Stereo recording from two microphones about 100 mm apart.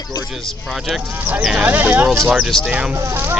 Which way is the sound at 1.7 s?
20° right (ahead or behind).